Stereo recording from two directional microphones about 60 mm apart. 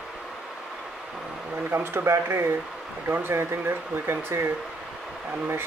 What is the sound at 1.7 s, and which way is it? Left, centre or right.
Speech, right.